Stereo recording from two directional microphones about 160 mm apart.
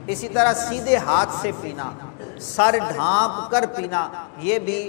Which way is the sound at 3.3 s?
25° left (ahead or behind).